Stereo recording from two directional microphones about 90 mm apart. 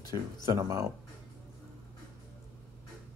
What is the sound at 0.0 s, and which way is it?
Speech, 45° left (ahead or behind).